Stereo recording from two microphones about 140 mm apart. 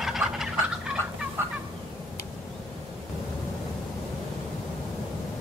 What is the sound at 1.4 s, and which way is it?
Fowl, 15° right (ahead or behind).